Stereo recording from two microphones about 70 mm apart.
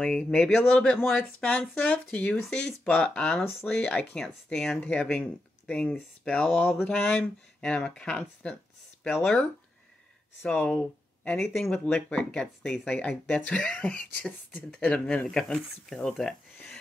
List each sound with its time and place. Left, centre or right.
0.0 s speech: centre
4.7 s speech: centre
10.5 s speech: left
11.4 s speech: centre
11.7 s speech: centre